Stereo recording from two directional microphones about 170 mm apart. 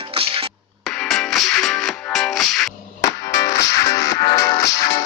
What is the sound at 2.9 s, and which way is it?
Music, 20° left (ahead or behind).